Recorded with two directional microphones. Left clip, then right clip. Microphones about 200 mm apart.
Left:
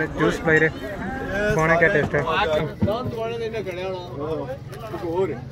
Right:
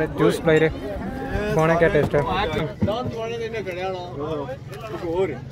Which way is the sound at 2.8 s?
25° right (ahead or behind).